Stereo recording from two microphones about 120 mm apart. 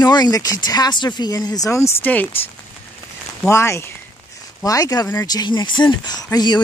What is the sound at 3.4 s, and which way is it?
Speech, 25° left (ahead or behind).